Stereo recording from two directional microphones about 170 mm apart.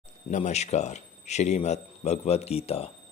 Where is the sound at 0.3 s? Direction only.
40° left (ahead or behind).